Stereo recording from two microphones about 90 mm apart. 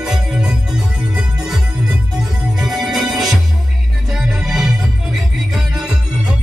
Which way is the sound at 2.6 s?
5° right (ahead or behind).